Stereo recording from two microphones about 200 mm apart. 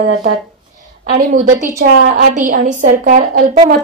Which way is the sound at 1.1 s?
40° right (ahead or behind).